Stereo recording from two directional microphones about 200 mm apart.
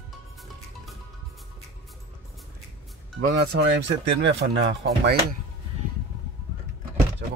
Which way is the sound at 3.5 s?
60° right (ahead or behind).